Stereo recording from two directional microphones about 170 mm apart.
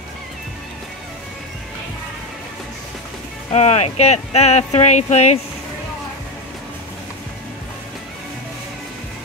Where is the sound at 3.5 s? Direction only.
40° left (ahead or behind).